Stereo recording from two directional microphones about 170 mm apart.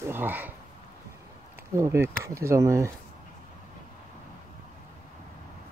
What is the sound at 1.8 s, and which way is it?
Speech, 15° right (ahead or behind).